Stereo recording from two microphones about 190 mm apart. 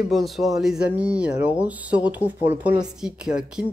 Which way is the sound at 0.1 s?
Centre (ahead or behind).